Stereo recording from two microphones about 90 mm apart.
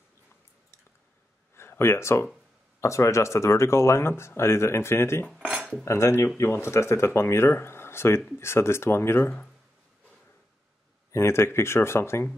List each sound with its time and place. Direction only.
1.5 s a sound: 25° left (ahead or behind)
2.8 s speech: 35° left (ahead or behind)
5.5 s cutlery: 5° left (ahead or behind)
5.9 s speech: 30° left (ahead or behind)
11.1 s speech: 30° left (ahead or behind)